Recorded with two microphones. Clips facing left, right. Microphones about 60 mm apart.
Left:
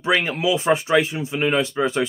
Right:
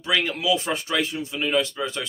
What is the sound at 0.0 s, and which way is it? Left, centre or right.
Speech, centre.